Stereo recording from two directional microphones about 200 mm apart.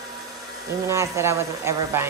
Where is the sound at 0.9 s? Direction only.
15° right (ahead or behind).